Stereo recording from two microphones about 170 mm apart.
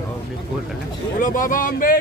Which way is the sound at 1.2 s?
50° left (ahead or behind).